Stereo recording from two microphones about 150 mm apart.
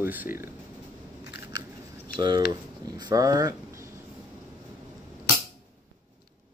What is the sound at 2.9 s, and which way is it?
Speech, 25° right (ahead or behind).